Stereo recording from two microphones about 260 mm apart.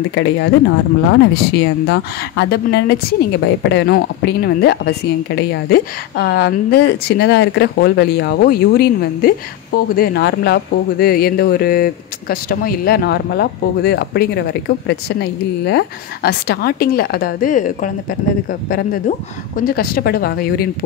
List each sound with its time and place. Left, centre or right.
0.1 s speech: left